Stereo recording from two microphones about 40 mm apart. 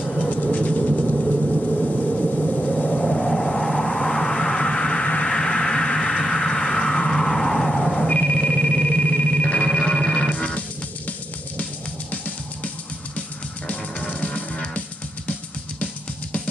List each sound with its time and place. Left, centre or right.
0.2 s vehicle: left
3.0 s vehicle: centre
8.1 s music: left
10.3 s music: left
13.7 s music: left